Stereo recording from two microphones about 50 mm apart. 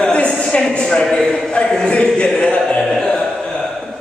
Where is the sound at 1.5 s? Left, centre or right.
Centre.